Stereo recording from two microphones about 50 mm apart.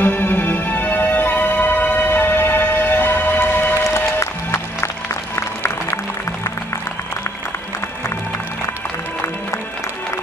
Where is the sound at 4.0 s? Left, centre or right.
Left.